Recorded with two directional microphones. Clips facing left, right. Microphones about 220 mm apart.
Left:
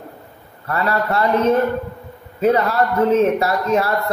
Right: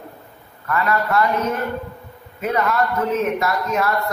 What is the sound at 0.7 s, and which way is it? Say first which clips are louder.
Speech: left 1 dB; 35° left (ahead or behind).